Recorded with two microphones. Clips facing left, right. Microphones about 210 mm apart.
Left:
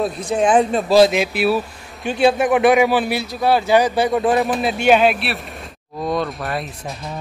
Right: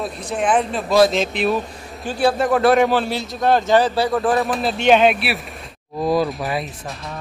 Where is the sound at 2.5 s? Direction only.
15° left (ahead or behind).